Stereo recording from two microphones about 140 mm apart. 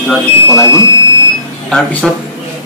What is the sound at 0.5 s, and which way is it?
Speech, 25° left (ahead or behind).